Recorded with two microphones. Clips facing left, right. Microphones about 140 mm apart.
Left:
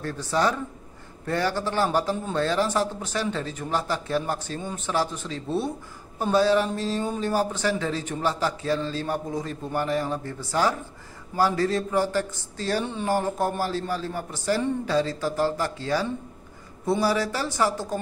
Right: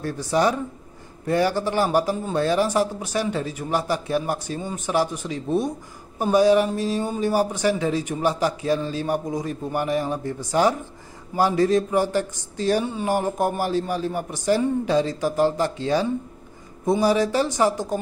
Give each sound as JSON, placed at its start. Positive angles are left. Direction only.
{"t": 0.0, "sound": "speech", "side_deg": -15}